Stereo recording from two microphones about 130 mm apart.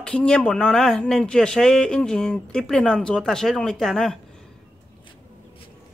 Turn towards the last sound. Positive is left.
turn(degrees=0)  # may be behind; listen again after turning